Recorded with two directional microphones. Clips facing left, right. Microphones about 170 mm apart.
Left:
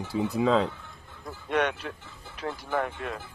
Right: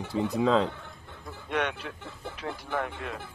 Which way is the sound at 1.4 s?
45° left (ahead or behind).